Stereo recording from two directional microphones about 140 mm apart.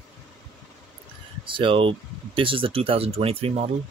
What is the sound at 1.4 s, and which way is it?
Speech, 35° right (ahead or behind).